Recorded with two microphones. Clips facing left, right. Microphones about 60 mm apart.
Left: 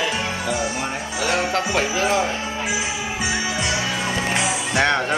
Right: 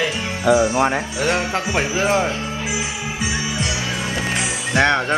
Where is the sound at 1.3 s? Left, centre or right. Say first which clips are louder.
Left 1 dB; right.